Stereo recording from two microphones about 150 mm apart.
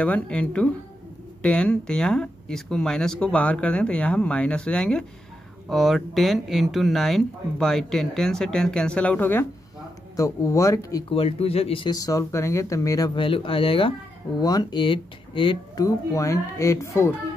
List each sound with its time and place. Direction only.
0.0 s speech: 10° left (ahead or behind)
11.1 s speech: 40° left (ahead or behind); by 17.2 s 20° left (ahead or behind)